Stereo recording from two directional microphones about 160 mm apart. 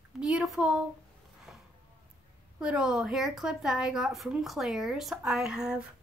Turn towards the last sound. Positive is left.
turn(degrees=-5)  # may be behind; listen again after turning